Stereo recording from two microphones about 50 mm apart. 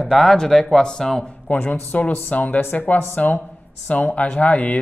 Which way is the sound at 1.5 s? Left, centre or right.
Left.